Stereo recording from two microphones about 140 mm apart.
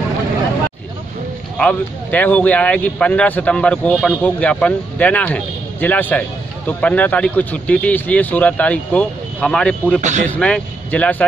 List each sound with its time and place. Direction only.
1.6 s speech: 10° left (ahead or behind)
10.0 s speech: 60° right (ahead or behind)
10.3 s speech: 10° left (ahead or behind)